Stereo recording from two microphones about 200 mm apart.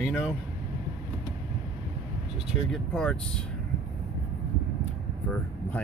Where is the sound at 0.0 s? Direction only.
Centre (ahead or behind).